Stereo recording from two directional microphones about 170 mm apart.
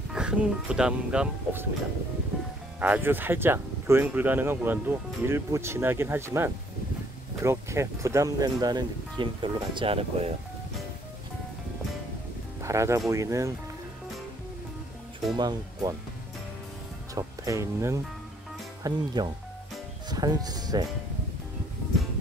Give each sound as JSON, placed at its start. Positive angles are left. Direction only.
{"t": 0.1, "sound": "speech", "side_deg": -5}
{"t": 2.8, "sound": "speech", "side_deg": -10}
{"t": 12.6, "sound": "speech", "side_deg": -15}
{"t": 15.3, "sound": "speech", "side_deg": -25}
{"t": 17.1, "sound": "speech", "side_deg": -20}